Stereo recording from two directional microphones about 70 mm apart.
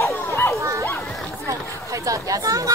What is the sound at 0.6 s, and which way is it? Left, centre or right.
Dog, right.